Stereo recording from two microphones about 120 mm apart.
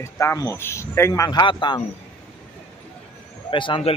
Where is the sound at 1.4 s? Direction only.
40° left (ahead or behind).